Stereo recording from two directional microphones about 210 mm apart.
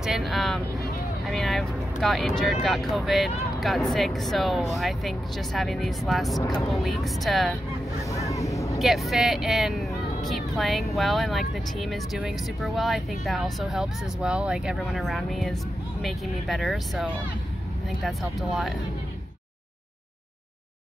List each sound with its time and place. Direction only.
0.0 s vehicle: centre (ahead or behind)
1.2 s speech: centre (ahead or behind)
6.4 s speech: 15° left (ahead or behind)
6.7 s speech: centre (ahead or behind)
8.0 s a sound: 15° left (ahead or behind)
8.7 s speech: centre (ahead or behind)